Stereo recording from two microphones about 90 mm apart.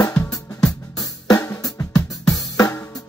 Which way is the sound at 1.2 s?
40° left (ahead or behind).